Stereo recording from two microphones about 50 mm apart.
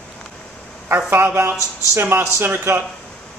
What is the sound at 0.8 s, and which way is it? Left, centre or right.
A man's voice, right.